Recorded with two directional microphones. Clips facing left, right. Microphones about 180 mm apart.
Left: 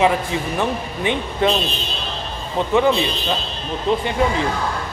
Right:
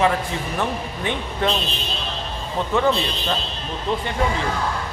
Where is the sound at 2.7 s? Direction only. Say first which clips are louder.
Left 3 dB; 15° left (ahead or behind).